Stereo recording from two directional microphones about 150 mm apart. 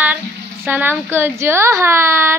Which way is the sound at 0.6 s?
15° right (ahead or behind).